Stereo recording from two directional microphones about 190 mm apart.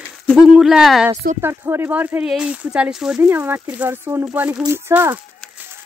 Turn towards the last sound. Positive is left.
turn(degrees=-10)  # may be behind; listen again after turning